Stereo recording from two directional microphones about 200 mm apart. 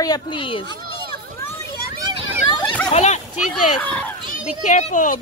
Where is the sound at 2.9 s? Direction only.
35° left (ahead or behind).